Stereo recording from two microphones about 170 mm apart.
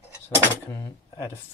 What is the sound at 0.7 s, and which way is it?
Speech, 15° left (ahead or behind).